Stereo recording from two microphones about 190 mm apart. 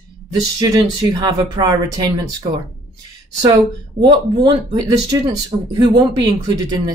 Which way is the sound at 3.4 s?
25° right (ahead or behind).